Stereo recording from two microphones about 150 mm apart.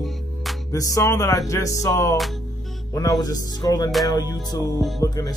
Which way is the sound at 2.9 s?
25° left (ahead or behind).